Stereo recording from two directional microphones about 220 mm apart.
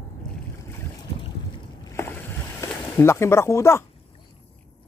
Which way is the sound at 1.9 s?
10° left (ahead or behind).